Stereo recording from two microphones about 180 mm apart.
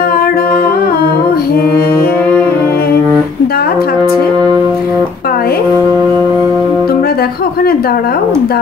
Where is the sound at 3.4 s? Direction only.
60° left (ahead or behind).